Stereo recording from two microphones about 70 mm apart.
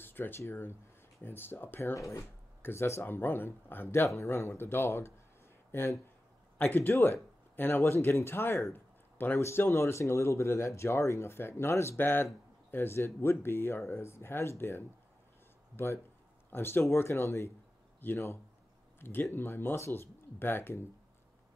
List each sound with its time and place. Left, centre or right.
0.0 s a sound: left
0.4 s speech: left
2.0 s speech: left
2.6 s speech: left
4.0 s speech: left